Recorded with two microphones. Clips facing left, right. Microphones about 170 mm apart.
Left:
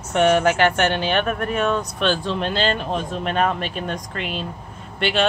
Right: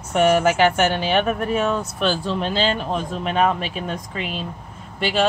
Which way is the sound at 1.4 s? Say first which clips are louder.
Right 1 dB; 60° left (ahead or behind).